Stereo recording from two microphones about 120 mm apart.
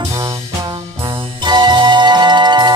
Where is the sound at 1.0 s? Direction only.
40° right (ahead or behind).